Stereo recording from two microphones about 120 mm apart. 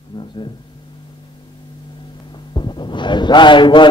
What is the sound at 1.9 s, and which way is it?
Speech, 40° left (ahead or behind).